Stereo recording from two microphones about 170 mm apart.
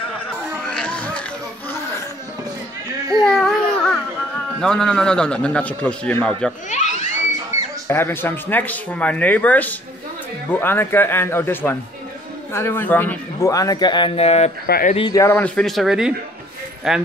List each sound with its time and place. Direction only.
0.7 s music: 5° left (ahead or behind)
3.3 s a sound: centre (ahead or behind)
4.6 s a man's voice: 5° left (ahead or behind)
6.7 s a sound: 45° left (ahead or behind)
7.9 s a man's voice: 15° left (ahead or behind); by 14.5 s 40° left (ahead or behind)
14.7 s speech: 55° left (ahead or behind)
15.0 s a man's voice: 20° left (ahead or behind); by 17.0 s 5° right (ahead or behind)